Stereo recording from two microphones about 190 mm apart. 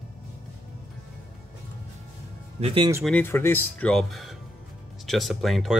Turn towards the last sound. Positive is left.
turn(degrees=0)  # may be behind; listen again after turning